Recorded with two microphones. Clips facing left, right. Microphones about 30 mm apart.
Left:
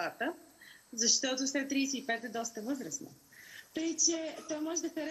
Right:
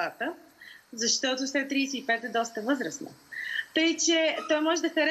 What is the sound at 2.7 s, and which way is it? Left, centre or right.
Speech, right.